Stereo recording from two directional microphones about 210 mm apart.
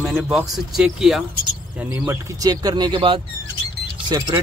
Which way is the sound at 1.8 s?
15° right (ahead or behind).